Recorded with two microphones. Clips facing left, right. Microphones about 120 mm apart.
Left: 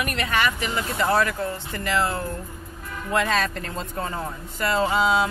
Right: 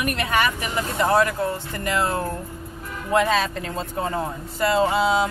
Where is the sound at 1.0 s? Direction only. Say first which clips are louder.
Right 3 dB; 20° right (ahead or behind).